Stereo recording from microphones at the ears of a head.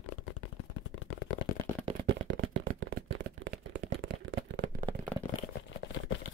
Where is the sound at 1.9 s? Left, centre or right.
Right.